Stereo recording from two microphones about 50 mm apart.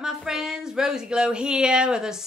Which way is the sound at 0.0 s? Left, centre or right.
Centre.